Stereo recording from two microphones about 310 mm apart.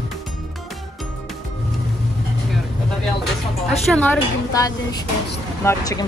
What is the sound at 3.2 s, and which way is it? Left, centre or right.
Speech, centre.